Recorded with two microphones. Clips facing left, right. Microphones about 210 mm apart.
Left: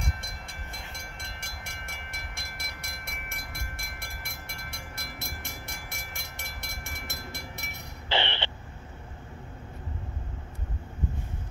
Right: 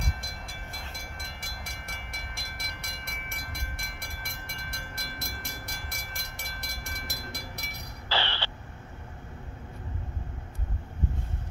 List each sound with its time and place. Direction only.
0.0 s train: centre (ahead or behind)
8.1 s vehicle: 20° left (ahead or behind)